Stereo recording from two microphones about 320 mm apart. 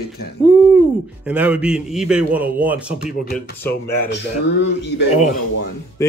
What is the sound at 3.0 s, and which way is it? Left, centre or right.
Speech, left.